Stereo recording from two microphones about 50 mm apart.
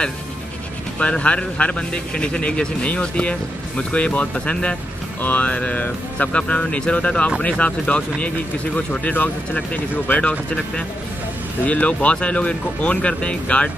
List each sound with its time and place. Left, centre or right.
0.9 s a man's voice: left
11.6 s a man's voice: left